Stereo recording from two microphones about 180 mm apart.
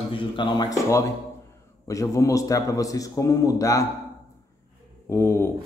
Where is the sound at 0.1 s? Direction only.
25° left (ahead or behind).